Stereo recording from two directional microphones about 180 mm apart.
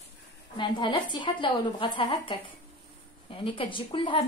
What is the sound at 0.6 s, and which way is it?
A woman's voice, 25° left (ahead or behind).